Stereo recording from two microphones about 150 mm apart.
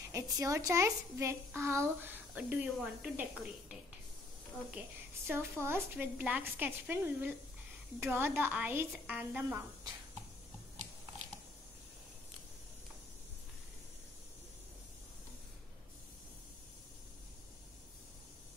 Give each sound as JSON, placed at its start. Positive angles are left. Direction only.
{"t": 0.1, "sound": "a woman's voice", "side_deg": -20}